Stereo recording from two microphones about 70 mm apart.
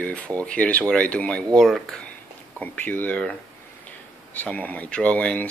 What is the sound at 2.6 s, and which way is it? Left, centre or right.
Speech, left.